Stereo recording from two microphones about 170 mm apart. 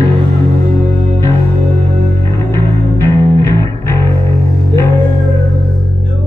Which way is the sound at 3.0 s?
15° left (ahead or behind).